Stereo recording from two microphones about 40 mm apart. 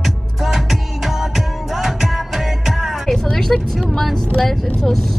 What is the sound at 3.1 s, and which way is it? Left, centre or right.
Vehicle, centre.